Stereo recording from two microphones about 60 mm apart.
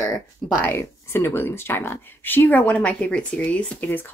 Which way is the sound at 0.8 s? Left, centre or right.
Left.